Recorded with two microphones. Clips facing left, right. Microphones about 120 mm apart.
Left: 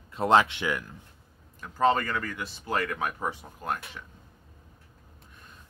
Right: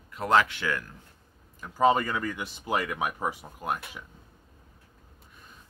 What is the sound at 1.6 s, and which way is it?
Speech, 10° right (ahead or behind).